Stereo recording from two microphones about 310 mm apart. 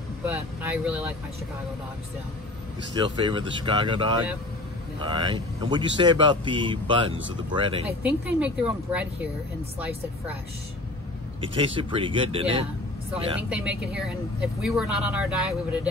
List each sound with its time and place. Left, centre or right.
0.2 s speech: centre
3.3 s speech: centre
8.0 s speech: centre
11.4 s speech: centre
13.5 s speech: centre